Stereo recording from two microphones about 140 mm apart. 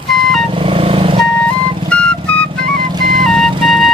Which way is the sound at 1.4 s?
5° left (ahead or behind).